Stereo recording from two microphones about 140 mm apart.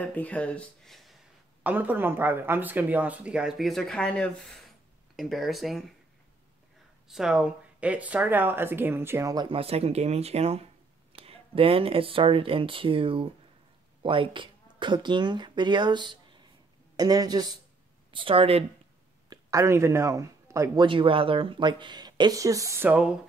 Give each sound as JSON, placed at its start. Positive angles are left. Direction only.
{"t": 0.0, "sound": "speech", "side_deg": 10}
{"t": 1.6, "sound": "speech", "side_deg": -10}
{"t": 7.1, "sound": "speech", "side_deg": -5}
{"t": 9.5, "sound": "speech", "side_deg": -45}
{"t": 18.1, "sound": "speech", "side_deg": -40}
{"t": 19.2, "sound": "speech", "side_deg": -25}
{"t": 20.8, "sound": "speech", "side_deg": -40}